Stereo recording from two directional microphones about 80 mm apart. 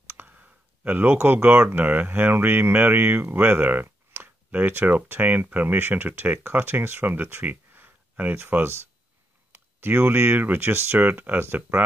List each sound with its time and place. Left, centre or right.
0.1 s speech: right